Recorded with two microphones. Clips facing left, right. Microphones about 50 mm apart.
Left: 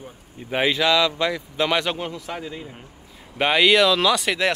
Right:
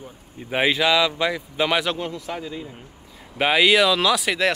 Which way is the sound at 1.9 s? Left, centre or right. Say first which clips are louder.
Right 1 dB; centre.